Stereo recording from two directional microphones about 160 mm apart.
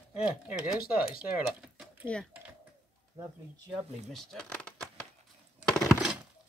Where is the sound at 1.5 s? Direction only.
Centre (ahead or behind).